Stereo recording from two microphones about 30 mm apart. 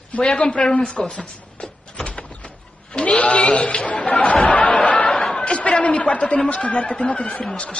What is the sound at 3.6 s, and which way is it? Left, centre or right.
Speech, left.